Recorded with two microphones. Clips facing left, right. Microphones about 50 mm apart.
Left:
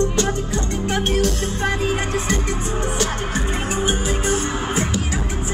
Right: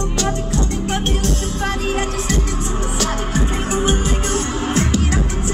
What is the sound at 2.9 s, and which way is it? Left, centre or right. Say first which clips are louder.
Music: right 1 dB; centre.